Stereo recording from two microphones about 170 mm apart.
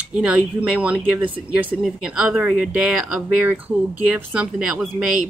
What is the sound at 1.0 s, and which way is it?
Speech, 30° right (ahead or behind).